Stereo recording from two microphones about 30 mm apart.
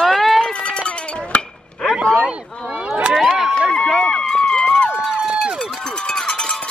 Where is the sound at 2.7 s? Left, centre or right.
Right.